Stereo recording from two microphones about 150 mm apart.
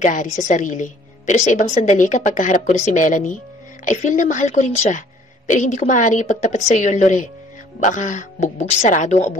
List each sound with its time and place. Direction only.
0.0 s a woman's voice: 55° left (ahead or behind)